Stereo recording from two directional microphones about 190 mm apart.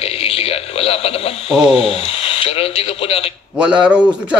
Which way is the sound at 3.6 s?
5° right (ahead or behind).